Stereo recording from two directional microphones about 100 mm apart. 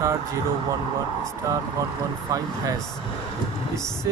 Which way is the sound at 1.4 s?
35° right (ahead or behind).